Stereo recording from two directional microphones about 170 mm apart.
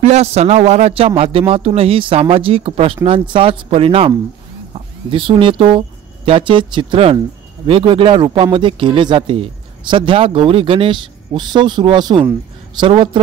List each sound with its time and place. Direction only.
0.0 s a man's voice: 40° right (ahead or behind)